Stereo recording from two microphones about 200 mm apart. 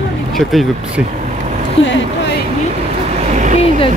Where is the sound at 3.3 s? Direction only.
40° right (ahead or behind).